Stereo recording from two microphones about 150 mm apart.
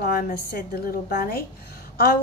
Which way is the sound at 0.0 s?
90° left.